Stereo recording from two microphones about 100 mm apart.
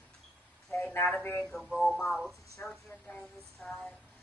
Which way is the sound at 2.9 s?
25° left (ahead or behind).